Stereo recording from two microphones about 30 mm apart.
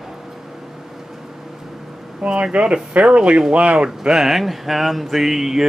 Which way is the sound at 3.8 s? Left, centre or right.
Right.